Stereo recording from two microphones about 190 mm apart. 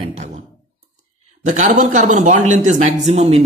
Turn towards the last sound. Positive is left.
turn(degrees=-35)  # may be behind; listen again after turning